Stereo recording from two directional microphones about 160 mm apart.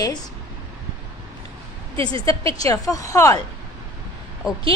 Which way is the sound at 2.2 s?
20° left (ahead or behind).